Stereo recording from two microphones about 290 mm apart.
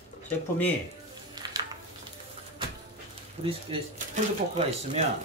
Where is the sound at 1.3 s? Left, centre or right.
Centre.